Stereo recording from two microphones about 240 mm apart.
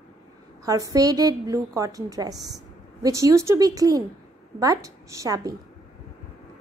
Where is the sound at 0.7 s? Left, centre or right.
Centre.